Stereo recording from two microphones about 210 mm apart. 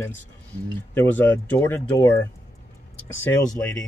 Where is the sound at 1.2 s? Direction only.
10° left (ahead or behind).